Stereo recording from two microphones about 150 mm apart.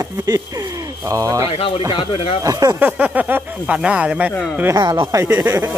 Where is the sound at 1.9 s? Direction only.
35° left (ahead or behind).